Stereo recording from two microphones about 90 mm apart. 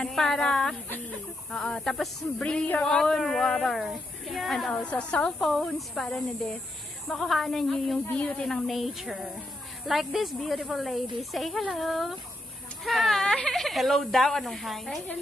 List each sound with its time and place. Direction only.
0.0 s speech: 5° left (ahead or behind)
0.8 s speech: 20° left (ahead or behind)
1.5 s speech: 5° left (ahead or behind)